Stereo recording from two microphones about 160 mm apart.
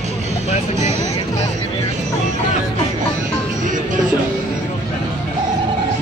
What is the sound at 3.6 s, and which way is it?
Music, 55° right (ahead or behind).